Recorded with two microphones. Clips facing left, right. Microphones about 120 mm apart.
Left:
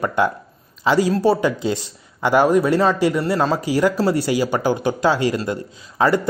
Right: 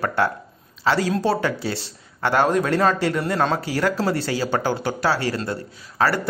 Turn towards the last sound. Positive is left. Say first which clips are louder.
# left 4 dB
turn(degrees=15)  # may be behind; listen again after turning